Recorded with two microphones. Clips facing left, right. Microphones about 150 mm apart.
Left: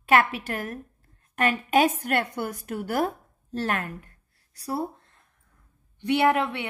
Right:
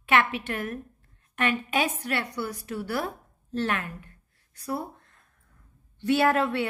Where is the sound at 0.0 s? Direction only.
40° left (ahead or behind).